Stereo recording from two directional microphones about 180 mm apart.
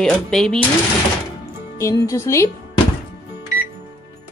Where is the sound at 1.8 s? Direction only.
20° left (ahead or behind).